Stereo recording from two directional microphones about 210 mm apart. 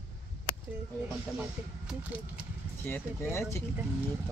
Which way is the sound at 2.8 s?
10° left (ahead or behind).